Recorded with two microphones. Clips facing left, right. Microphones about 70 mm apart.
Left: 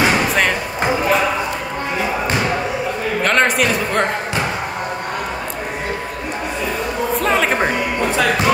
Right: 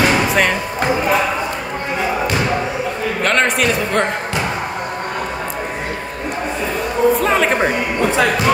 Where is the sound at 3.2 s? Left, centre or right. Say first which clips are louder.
Even; centre.